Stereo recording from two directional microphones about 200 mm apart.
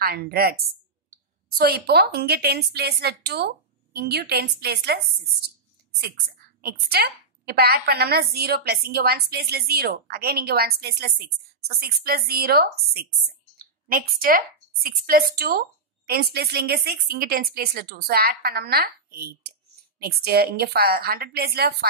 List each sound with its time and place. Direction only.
0.0 s a woman's voice: 50° right (ahead or behind)
1.6 s a woman's voice: 50° right (ahead or behind)